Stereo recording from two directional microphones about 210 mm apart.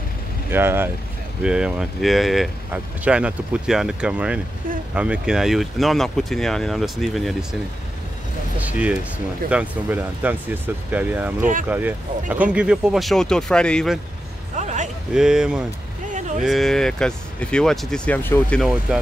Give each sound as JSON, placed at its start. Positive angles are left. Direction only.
{"t": 0.5, "sound": "speech", "side_deg": -10}
{"t": 8.5, "sound": "speech", "side_deg": -5}
{"t": 14.6, "sound": "a sound", "side_deg": -35}
{"t": 15.1, "sound": "speech", "side_deg": -5}
{"t": 16.1, "sound": "vehicle", "side_deg": -35}
{"t": 16.4, "sound": "speech", "side_deg": 0}